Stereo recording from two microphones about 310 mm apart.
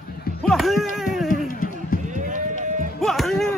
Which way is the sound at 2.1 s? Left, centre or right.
Right.